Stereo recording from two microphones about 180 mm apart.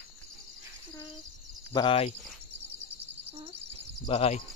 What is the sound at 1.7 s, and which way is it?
Speech, 30° left (ahead or behind).